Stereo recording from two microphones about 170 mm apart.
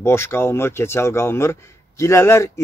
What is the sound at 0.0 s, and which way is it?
Speech, 15° left (ahead or behind).